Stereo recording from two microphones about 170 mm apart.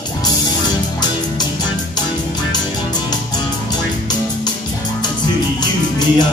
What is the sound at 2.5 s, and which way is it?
Music, 25° left (ahead or behind).